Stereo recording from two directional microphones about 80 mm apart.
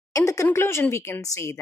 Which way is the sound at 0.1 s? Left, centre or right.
Left.